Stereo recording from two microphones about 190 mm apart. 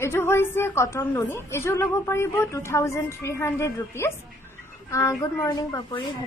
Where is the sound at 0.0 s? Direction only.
15° left (ahead or behind).